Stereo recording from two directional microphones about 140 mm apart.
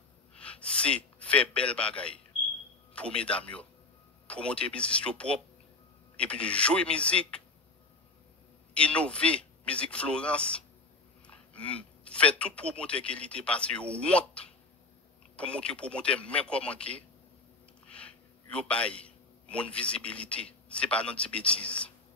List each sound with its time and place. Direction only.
0.3 s a man's voice: 10° left (ahead or behind)
8.7 s speech: 10° left (ahead or behind)
17.8 s a sound: 10° left (ahead or behind)
19.0 s a man's voice: 10° left (ahead or behind)